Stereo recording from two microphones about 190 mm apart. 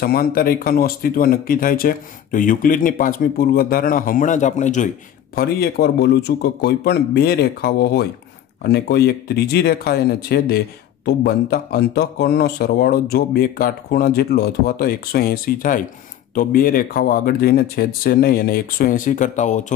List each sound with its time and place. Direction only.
0.0 s speech: 50° left (ahead or behind)